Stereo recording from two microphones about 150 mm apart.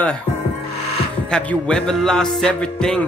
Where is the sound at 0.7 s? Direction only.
45° left (ahead or behind).